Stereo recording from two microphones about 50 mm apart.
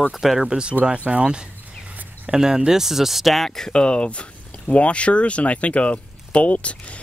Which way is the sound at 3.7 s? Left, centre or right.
Centre.